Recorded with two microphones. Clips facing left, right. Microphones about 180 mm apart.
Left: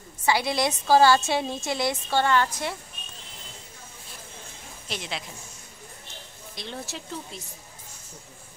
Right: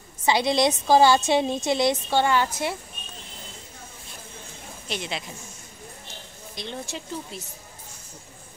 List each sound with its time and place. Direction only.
0.2 s a woman's voice: 20° right (ahead or behind)
4.8 s a woman's voice: centre (ahead or behind)
6.5 s speech: centre (ahead or behind)